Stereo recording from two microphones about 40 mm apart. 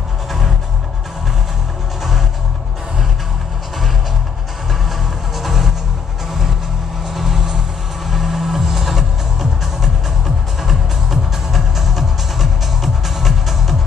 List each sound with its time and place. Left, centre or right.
5.3 s music: centre
7.2 s vehicle: centre
8.1 s music: centre